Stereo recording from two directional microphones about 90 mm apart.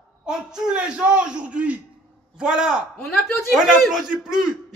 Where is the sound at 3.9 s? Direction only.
5° right (ahead or behind).